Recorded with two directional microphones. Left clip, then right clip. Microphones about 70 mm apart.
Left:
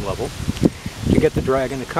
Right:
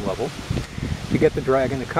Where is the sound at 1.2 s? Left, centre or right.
Centre.